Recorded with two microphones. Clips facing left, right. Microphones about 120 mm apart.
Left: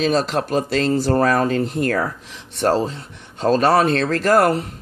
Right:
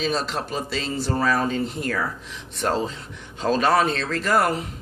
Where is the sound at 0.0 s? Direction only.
50° left (ahead or behind).